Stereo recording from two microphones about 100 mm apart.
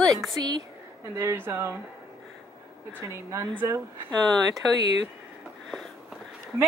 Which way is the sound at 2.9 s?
25° right (ahead or behind).